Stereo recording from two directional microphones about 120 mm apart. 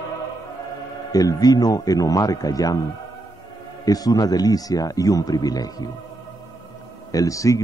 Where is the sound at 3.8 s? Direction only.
30° left (ahead or behind).